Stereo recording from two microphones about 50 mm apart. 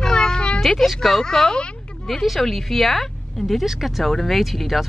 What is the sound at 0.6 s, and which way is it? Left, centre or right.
Speech, centre.